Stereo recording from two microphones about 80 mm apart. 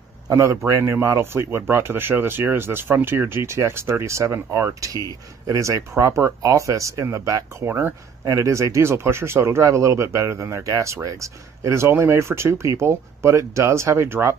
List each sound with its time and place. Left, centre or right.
0.3 s speech: right
7.6 s speech: right
8.3 s speech: right